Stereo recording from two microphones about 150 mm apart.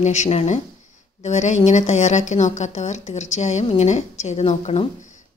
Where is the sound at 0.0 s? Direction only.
50° left (ahead or behind).